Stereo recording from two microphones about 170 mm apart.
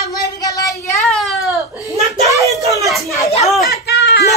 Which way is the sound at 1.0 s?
Centre (ahead or behind).